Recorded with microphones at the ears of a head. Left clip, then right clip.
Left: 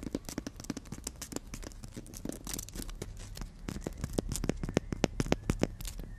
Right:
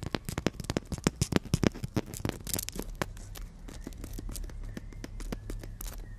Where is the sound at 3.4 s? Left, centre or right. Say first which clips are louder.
Left 7 dB; left.